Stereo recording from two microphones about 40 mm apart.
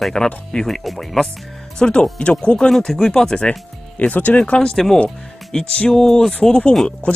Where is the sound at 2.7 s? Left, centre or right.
Centre.